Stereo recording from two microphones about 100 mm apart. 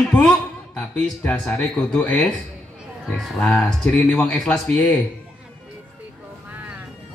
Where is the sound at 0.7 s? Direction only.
10° left (ahead or behind).